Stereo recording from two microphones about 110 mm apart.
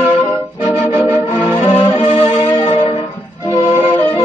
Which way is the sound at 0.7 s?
25° right (ahead or behind).